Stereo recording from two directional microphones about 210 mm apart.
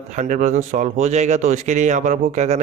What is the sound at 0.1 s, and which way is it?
Speech, 35° right (ahead or behind).